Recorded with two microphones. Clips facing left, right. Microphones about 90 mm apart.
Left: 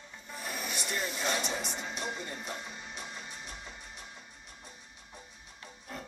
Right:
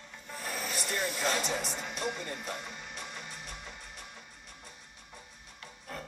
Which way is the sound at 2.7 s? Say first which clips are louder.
Even; 15° left (ahead or behind).